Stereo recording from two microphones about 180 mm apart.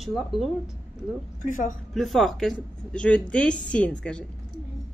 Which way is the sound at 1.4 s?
45° left (ahead or behind).